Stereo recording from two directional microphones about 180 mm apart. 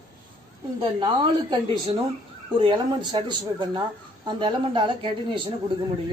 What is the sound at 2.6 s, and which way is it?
Speech, 25° right (ahead or behind).